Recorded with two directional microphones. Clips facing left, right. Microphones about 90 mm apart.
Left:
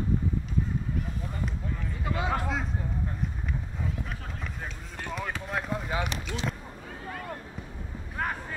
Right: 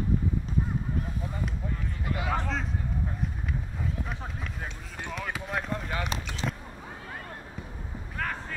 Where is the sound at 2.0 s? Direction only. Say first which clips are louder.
Left 1 dB; 25° left (ahead or behind).